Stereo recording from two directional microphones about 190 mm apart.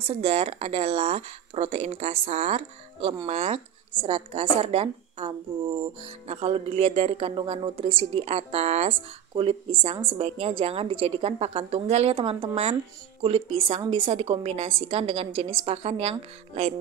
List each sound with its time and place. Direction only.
0.0 s speech: 30° right (ahead or behind)